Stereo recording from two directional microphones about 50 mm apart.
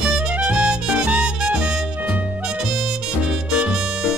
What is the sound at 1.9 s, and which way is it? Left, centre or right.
Music, right.